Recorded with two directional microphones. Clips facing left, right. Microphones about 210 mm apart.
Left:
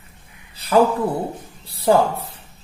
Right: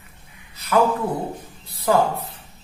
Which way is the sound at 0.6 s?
30° left (ahead or behind).